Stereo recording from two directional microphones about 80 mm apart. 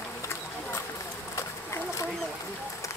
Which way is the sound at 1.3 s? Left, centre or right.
Left.